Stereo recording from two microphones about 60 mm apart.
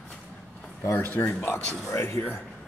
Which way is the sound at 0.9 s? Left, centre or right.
Left.